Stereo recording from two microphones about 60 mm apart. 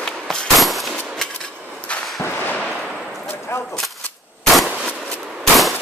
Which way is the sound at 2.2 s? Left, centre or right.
Left.